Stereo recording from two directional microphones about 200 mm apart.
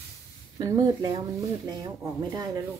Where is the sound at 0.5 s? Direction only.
20° right (ahead or behind).